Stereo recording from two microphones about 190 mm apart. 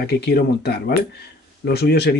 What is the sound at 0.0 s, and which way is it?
Speech, 60° left (ahead or behind).